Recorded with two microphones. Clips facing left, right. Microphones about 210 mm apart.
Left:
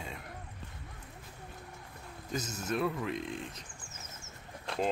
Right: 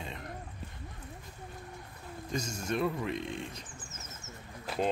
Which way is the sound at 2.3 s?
5° left (ahead or behind).